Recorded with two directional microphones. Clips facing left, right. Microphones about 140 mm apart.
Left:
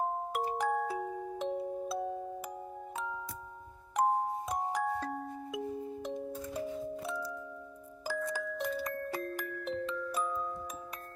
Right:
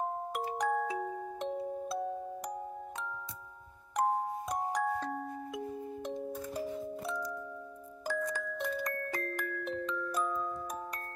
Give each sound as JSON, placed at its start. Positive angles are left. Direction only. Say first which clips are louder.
{"t": 0.6, "sound": "music", "louder": "right 2 dB", "side_deg": 5}
{"t": 3.9, "sound": "music", "louder": "left 1 dB", "side_deg": 0}
{"t": 8.1, "sound": "glockenspiel", "louder": "even", "side_deg": 5}